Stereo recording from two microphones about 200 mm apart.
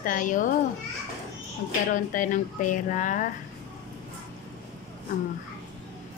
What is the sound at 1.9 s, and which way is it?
A woman's voice, 40° left (ahead or behind).